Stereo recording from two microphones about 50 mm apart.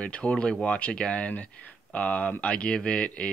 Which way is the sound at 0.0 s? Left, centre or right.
Left.